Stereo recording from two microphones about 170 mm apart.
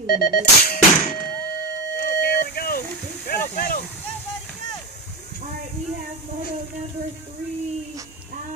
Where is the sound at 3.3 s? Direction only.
60° left (ahead or behind).